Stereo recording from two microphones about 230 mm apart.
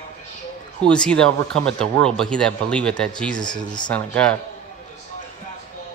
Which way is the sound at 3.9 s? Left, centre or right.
Centre.